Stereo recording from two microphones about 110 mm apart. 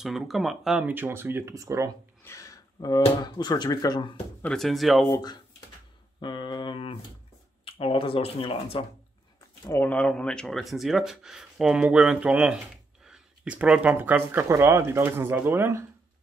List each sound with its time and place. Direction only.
0.0 s speech: centre (ahead or behind)
0.8 s speech: 20° right (ahead or behind)
2.2 s a sound: 30° left (ahead or behind)
3.3 s speech: 45° left (ahead or behind)
4.4 s speech: 5° left (ahead or behind)
5.1 s speech: 40° left (ahead or behind)
9.7 s speech: 15° left (ahead or behind); by 15.8 s 20° right (ahead or behind)